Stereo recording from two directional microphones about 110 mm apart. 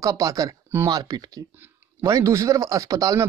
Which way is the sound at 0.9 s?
40° right (ahead or behind).